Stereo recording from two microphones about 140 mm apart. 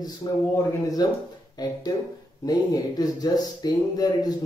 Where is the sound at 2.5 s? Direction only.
30° left (ahead or behind).